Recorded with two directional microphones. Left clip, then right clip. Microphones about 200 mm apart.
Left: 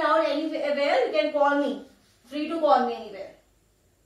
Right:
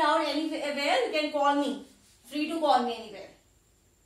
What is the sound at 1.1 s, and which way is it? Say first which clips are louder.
Speech: left 4 dB; 25° right (ahead or behind).